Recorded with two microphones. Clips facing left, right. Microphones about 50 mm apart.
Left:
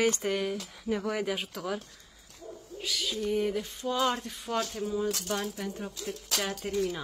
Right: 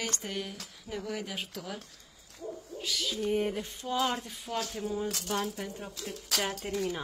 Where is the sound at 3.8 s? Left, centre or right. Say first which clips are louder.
Left 2 dB; centre.